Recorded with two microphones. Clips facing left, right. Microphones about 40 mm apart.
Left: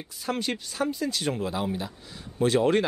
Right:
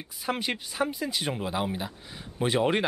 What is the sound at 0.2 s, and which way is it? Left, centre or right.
Speech, centre.